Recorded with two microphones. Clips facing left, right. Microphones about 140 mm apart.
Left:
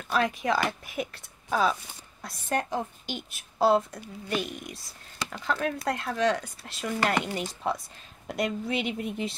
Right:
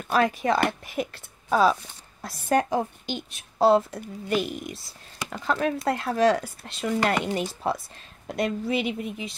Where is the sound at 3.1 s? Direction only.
Centre (ahead or behind).